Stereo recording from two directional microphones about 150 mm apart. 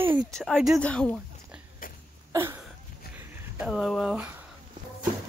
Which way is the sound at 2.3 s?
15° right (ahead or behind).